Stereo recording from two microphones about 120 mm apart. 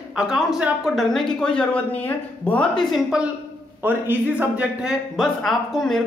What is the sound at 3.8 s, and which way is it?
A man's voice, 15° right (ahead or behind).